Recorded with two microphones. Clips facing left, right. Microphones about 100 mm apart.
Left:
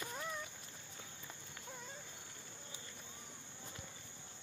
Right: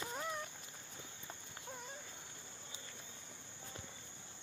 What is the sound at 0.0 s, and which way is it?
Cat, 20° right (ahead or behind).